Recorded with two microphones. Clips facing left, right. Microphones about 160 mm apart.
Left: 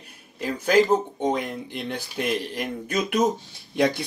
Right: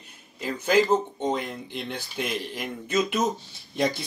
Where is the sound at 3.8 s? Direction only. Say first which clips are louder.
Left 4 dB; 65° left (ahead or behind).